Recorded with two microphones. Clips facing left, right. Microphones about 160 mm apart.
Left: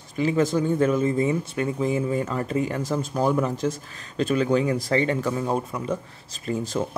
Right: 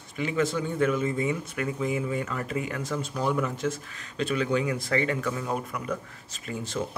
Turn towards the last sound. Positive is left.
turn(degrees=40)  # may be behind; listen again after turning